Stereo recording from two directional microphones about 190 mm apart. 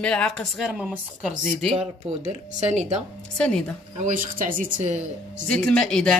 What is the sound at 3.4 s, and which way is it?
Speech, 5° left (ahead or behind).